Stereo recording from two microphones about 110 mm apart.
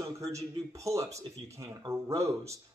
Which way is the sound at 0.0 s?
30° right (ahead or behind).